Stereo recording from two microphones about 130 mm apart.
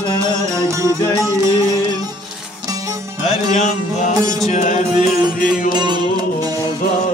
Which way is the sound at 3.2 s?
60° left (ahead or behind).